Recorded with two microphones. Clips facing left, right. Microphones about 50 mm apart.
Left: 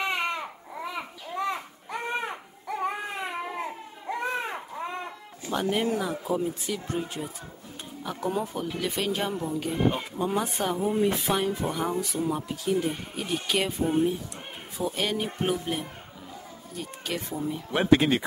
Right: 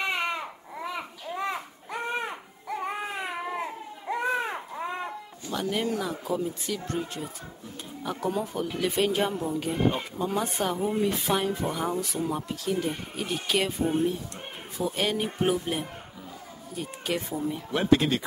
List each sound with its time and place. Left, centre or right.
0.1 s babbling: centre
2.8 s baby cry: centre
5.5 s speech: left
5.8 s speech: centre
8.0 s speech: centre
8.6 s speech: centre
17.6 s speech: centre